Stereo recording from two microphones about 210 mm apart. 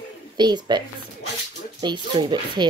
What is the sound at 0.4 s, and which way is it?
Speech, 20° right (ahead or behind).